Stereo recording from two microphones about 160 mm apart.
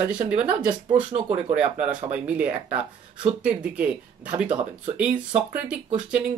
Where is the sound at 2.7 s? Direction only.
40° right (ahead or behind).